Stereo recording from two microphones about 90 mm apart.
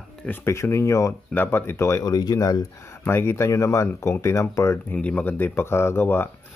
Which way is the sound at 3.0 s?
25° left (ahead or behind).